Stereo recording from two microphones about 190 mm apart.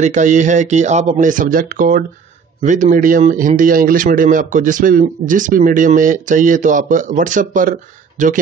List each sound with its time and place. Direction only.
0.0 s speech: 40° right (ahead or behind)